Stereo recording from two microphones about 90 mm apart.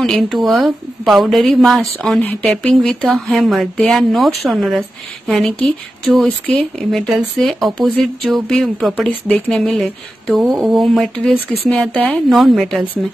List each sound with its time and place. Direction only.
0.0 s a woman's voice: centre (ahead or behind)
7.3 s a woman's voice: centre (ahead or behind)
11.7 s speech: 15° left (ahead or behind)
12.3 s a woman's voice: centre (ahead or behind)